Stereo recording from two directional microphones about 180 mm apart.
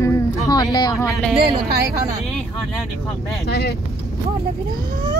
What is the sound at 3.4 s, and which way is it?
Speech, 65° left (ahead or behind).